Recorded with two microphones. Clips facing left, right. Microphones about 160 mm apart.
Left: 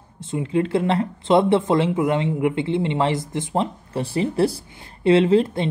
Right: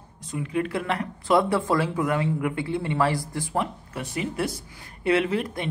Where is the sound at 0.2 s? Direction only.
25° left (ahead or behind).